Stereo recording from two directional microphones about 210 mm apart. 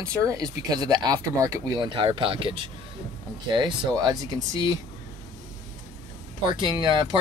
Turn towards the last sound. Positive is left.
turn(degrees=-20)  # may be behind; listen again after turning